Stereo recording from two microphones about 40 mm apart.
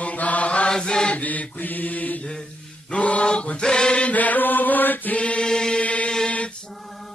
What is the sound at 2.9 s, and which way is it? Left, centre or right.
Chant, left.